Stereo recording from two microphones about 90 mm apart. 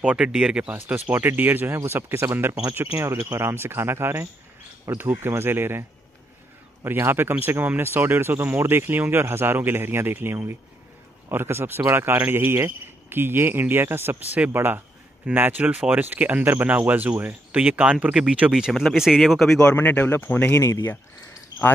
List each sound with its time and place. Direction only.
0.0 s speech: 10° right (ahead or behind)
0.7 s speech: 20° right (ahead or behind); by 19.7 s 5° left (ahead or behind)
19.7 s speech: 20° left (ahead or behind)